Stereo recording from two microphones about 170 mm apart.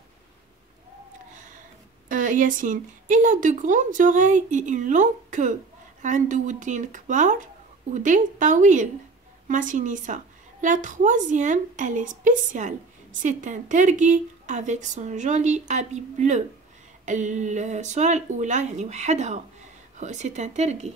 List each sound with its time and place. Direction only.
2.0 s speech: 50° right (ahead or behind)